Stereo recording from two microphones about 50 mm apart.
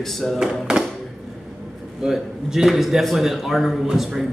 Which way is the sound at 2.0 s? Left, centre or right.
Centre.